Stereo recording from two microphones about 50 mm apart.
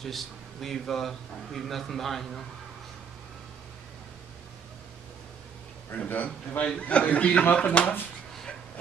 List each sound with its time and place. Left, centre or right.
0.0 s a man's voice: centre
5.9 s a man's voice: left